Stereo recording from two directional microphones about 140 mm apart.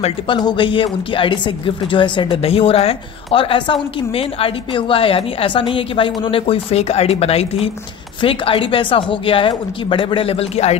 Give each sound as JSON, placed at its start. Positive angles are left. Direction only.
{"t": 0.0, "sound": "speech", "side_deg": 35}